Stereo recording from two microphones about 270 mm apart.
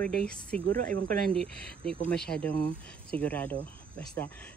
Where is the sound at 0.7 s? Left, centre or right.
Right.